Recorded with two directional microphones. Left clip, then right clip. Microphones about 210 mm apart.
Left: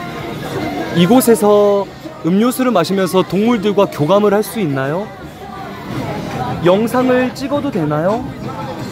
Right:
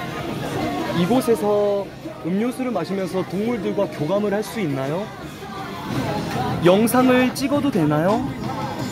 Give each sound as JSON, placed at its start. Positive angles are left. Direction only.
{"t": 1.0, "sound": "speech", "side_deg": 45}
{"t": 4.7, "sound": "speech", "side_deg": 15}
{"t": 6.6, "sound": "speech", "side_deg": -5}